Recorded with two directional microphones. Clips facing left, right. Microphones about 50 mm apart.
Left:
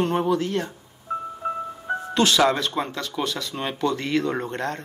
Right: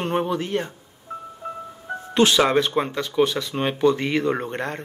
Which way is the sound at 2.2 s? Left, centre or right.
Right.